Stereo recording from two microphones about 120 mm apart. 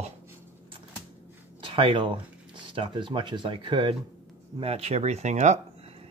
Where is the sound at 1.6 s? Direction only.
50° right (ahead or behind).